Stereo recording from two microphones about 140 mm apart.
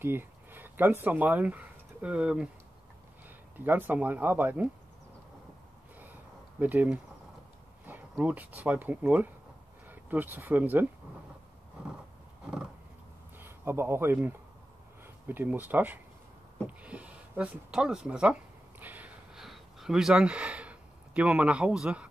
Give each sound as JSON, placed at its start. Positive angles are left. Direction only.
{"t": 0.0, "sound": "speech", "side_deg": -15}
{"t": 6.6, "sound": "speech", "side_deg": -10}
{"t": 13.4, "sound": "speech", "side_deg": -15}
{"t": 16.6, "sound": "a sound", "side_deg": -10}